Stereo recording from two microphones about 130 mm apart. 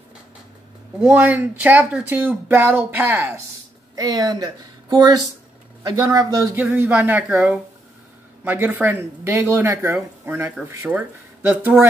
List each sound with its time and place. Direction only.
1.0 s speech: 10° right (ahead or behind)
3.9 s speech: 30° right (ahead or behind)
6.5 s speech: 15° right (ahead or behind)